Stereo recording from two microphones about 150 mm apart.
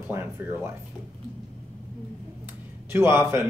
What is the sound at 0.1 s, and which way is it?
Speech, 15° right (ahead or behind).